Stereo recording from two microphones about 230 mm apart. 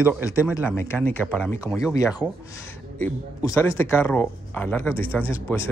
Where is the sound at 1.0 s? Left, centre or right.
Centre.